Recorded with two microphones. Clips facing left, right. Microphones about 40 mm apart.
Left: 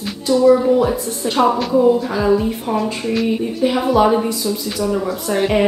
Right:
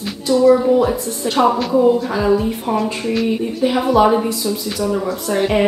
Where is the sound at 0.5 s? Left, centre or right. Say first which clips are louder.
Even; centre.